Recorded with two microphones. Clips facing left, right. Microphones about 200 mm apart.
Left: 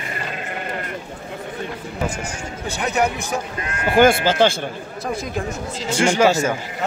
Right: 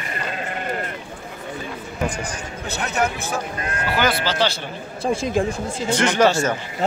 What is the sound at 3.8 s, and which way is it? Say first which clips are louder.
Speech: left 8 dB; 50° left (ahead or behind).